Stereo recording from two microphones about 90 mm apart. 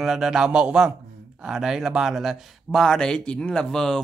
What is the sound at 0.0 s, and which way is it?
Speech, 5° right (ahead or behind).